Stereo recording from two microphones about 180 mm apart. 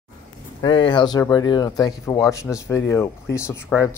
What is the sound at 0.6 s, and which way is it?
Speech, 25° left (ahead or behind).